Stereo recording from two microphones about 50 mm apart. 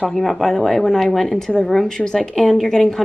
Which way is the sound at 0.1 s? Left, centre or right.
Centre.